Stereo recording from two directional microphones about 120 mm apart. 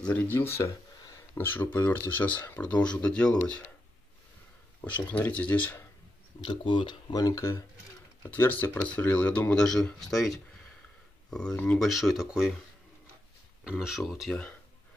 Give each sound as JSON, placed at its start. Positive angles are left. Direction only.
{"t": 0.0, "sound": "speech", "side_deg": 15}
{"t": 1.0, "sound": "a sound", "side_deg": 30}
{"t": 1.4, "sound": "speech", "side_deg": 15}
{"t": 4.8, "sound": "speech", "side_deg": 15}
{"t": 6.4, "sound": "speech", "side_deg": 40}
{"t": 11.9, "sound": "speech", "side_deg": 0}
{"t": 13.7, "sound": "speech", "side_deg": -5}